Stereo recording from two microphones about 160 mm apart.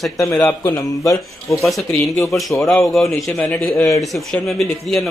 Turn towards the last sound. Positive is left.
turn(degrees=0)  # may be behind; listen again after turning